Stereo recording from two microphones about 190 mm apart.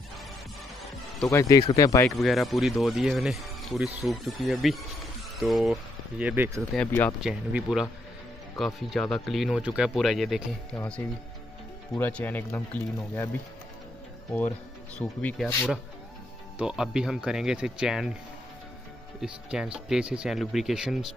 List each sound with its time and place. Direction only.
1.3 s speech: 15° left (ahead or behind)
2.0 s speech: centre (ahead or behind)
6.7 s speech: 5° left (ahead or behind)
15.0 s speech: 5° left (ahead or behind)
19.2 s speech: 5° right (ahead or behind)